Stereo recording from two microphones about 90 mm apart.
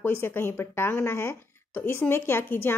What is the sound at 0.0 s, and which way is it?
A woman's voice, 25° left (ahead or behind).